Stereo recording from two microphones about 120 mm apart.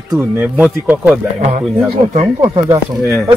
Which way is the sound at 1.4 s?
65° right (ahead or behind).